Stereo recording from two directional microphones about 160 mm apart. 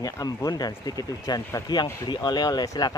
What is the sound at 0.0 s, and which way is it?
Speech, 25° left (ahead or behind).